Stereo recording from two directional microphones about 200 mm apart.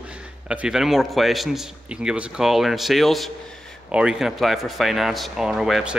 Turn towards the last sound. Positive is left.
turn(degrees=0)  # may be behind; listen again after turning